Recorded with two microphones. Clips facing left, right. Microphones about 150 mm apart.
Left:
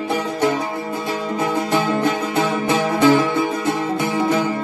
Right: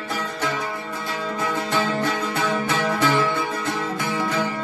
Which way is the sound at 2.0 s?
20° left (ahead or behind).